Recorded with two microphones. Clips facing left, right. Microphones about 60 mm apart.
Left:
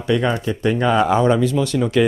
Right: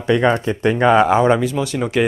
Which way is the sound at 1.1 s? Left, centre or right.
Right.